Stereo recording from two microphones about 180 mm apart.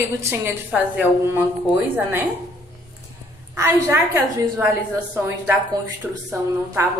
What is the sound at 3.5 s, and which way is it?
A woman's voice, 15° right (ahead or behind).